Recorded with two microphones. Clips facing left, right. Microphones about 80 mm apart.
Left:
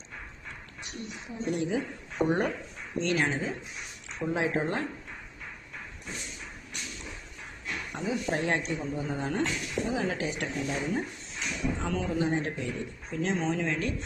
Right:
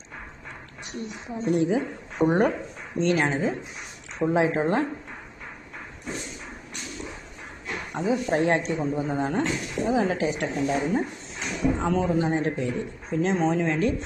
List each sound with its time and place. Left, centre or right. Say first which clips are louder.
1.5 s speech: right 7 dB; right
7.6 s speech: right 6 dB; right
10.5 s speech: right 6 dB; right